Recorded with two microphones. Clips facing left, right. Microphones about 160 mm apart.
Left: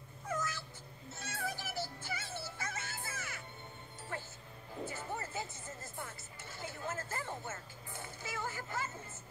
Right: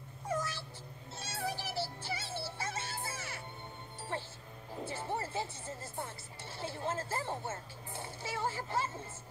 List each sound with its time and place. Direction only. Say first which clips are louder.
0.3 s dog: right 2 dB; 30° right (ahead or behind)
1.1 s music: right 3 dB; 30° right (ahead or behind)
1.6 s synthetic singing: right 3 dB; 30° right (ahead or behind)
4.1 s music: right 4 dB; 30° right (ahead or behind)